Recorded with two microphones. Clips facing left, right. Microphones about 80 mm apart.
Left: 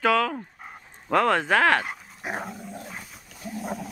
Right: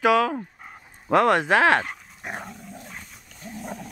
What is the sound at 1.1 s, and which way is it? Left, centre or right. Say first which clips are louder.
Speech: right 2 dB; centre.